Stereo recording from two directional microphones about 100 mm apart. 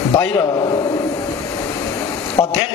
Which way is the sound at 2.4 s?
30° left (ahead or behind).